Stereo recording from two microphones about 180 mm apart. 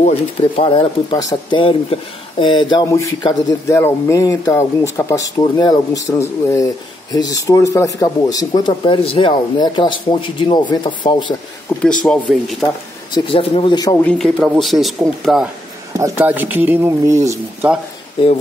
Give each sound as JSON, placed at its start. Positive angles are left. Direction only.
{"t": 0.6, "sound": "speech", "side_deg": 25}
{"t": 12.0, "sound": "a man's voice", "side_deg": 0}
{"t": 13.1, "sound": "speech", "side_deg": 30}
{"t": 14.0, "sound": "a man's voice", "side_deg": 0}